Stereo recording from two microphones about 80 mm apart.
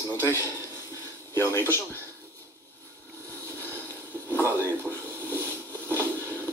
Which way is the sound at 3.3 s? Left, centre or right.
Left.